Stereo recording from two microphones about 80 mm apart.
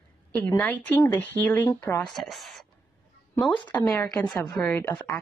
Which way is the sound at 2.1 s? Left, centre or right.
Centre.